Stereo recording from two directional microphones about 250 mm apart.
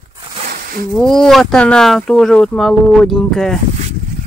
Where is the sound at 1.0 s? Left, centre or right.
Centre.